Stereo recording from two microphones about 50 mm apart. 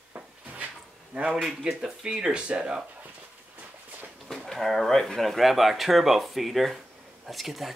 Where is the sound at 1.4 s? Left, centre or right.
Centre.